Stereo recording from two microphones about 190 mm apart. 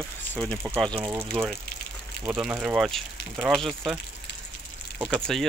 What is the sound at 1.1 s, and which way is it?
Speech, 10° right (ahead or behind).